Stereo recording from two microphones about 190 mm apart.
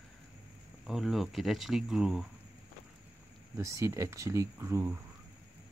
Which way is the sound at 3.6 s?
15° right (ahead or behind).